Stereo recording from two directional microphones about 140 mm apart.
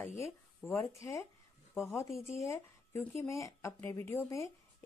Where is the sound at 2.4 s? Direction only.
20° left (ahead or behind).